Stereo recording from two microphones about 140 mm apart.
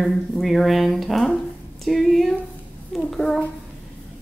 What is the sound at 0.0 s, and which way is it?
Speech, centre (ahead or behind).